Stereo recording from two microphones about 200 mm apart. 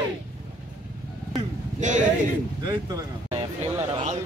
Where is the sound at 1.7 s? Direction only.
40° right (ahead or behind).